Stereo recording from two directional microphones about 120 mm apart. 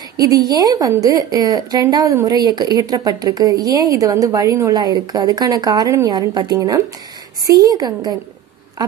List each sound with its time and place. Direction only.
0.2 s a woman's voice: 30° right (ahead or behind)